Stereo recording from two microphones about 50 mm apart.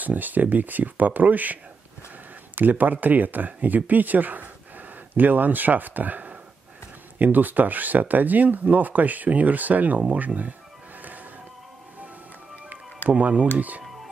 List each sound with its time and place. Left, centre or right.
0.0 s speech: right
13.2 s speech: right